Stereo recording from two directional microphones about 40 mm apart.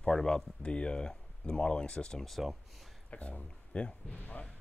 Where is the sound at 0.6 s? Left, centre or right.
Left.